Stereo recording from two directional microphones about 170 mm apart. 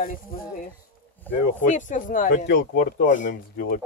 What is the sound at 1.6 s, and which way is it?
Speech, 45° left (ahead or behind).